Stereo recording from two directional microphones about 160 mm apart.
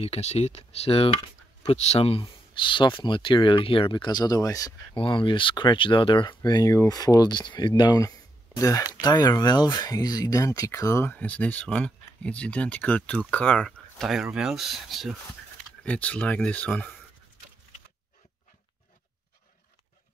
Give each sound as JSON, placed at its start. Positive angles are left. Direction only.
{"t": 0.0, "sound": "speech", "side_deg": 40}
{"t": 4.9, "sound": "speech", "side_deg": 30}